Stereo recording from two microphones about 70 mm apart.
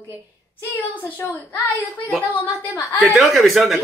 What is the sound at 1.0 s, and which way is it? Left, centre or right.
Speech, left.